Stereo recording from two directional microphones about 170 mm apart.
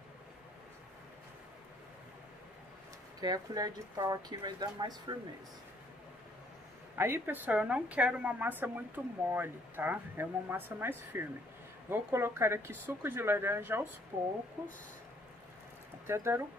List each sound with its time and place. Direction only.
3.2 s speech: 20° right (ahead or behind)
7.0 s a woman's voice: 15° right (ahead or behind)
16.1 s a woman's voice: 15° right (ahead or behind)